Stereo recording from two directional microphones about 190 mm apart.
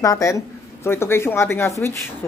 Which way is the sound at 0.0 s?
15° left (ahead or behind).